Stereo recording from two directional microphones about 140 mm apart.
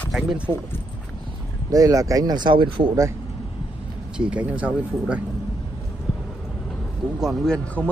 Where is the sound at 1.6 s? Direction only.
25° right (ahead or behind).